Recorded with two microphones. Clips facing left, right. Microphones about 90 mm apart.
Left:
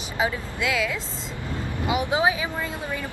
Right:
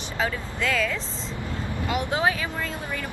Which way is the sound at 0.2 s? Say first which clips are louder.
Left 2 dB; 10° left (ahead or behind).